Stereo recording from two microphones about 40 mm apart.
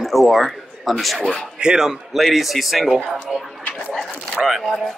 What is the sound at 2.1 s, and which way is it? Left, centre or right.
Speech, centre.